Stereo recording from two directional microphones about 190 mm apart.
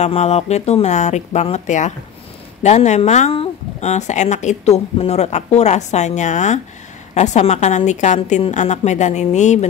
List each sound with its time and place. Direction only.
0.0 s speech: 35° left (ahead or behind)